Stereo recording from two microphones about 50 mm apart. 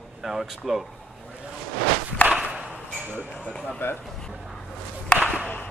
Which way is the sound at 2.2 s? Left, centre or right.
Left.